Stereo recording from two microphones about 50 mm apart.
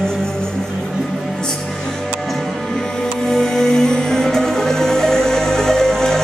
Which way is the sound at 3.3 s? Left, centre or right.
Centre.